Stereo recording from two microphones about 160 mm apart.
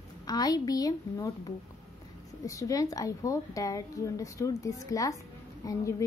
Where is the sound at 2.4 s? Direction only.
20° left (ahead or behind).